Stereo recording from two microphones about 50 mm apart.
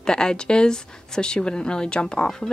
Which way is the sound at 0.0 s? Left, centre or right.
Centre.